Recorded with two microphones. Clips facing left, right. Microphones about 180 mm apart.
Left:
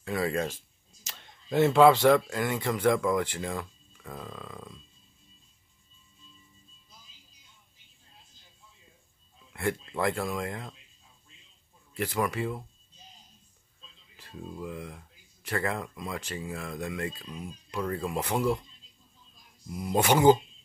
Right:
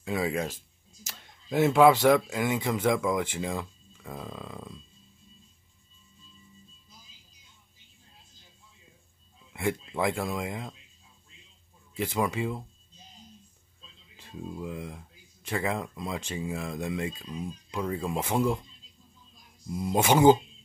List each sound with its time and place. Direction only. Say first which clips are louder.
0.0 s speech: even; 15° right (ahead or behind)
9.5 s speech: right 1 dB; 15° right (ahead or behind)
12.0 s speech: right 1 dB; 15° right (ahead or behind)
14.6 s speech: left 1 dB; 15° right (ahead or behind)
17.1 s speech: right 4 dB; centre (ahead or behind)
18.0 s speech: right 1 dB; 20° right (ahead or behind)
19.7 s speech: right 1 dB; 20° right (ahead or behind)